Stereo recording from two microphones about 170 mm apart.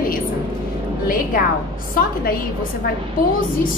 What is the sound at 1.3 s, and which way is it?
A woman's voice, 55° left (ahead or behind).